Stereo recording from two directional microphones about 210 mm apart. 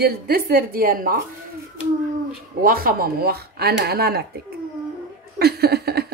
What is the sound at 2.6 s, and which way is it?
Speech, 45° right (ahead or behind).